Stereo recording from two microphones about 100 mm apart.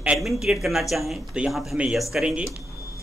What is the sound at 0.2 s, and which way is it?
Speech, centre (ahead or behind).